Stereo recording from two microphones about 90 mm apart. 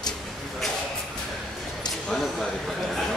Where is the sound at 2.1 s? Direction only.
5° left (ahead or behind).